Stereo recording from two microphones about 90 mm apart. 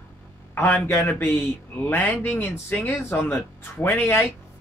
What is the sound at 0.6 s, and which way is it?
Speech, 20° left (ahead or behind).